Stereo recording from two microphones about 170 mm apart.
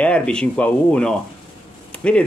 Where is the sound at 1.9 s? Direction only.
5° left (ahead or behind).